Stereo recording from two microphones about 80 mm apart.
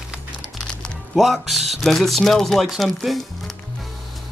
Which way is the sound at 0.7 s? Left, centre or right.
Centre.